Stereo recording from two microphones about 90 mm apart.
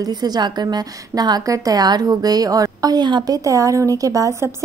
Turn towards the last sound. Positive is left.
turn(degrees=-35)  # may be behind; listen again after turning